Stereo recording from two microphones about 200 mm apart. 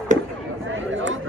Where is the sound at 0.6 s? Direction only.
70° right (ahead or behind).